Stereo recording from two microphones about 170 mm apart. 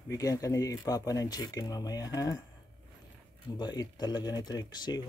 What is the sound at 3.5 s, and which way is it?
Speech, 25° left (ahead or behind).